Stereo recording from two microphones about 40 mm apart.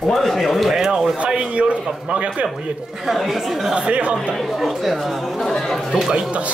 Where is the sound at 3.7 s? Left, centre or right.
Right.